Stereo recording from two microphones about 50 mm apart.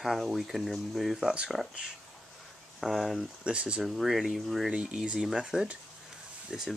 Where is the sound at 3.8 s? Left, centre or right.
Centre.